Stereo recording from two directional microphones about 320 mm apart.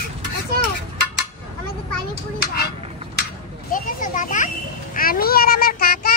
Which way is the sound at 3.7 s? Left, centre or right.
Left.